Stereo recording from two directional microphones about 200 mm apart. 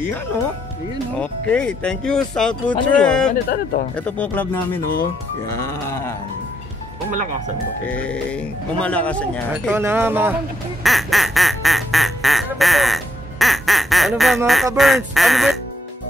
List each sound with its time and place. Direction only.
1.2 s speech: 5° left (ahead or behind)
3.4 s speech: 50° left (ahead or behind)
3.9 s speech: 5° left (ahead or behind)
5.6 s speech: 15° left (ahead or behind)
7.8 s speech: 5° left (ahead or behind)
9.5 s speech: 10° right (ahead or behind)
10.8 s music: centre (ahead or behind)
14.8 s speech: centre (ahead or behind)